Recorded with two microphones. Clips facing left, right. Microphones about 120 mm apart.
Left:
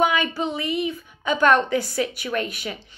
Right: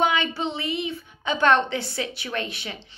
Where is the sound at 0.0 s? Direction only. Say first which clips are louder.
Left 2 dB; 25° right (ahead or behind).